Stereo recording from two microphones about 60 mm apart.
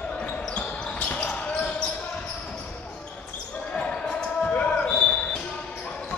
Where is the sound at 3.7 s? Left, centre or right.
Centre.